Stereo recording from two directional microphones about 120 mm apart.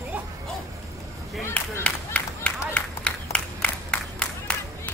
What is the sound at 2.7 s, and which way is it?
Crowd, 10° left (ahead or behind).